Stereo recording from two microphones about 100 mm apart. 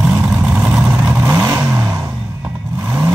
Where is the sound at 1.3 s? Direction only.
35° right (ahead or behind).